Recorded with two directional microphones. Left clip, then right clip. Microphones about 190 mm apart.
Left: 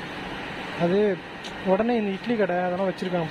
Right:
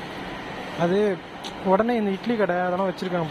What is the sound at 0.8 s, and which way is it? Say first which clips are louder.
Speech: even; 15° right (ahead or behind).